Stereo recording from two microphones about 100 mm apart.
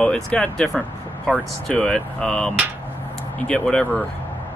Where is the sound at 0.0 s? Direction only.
10° left (ahead or behind).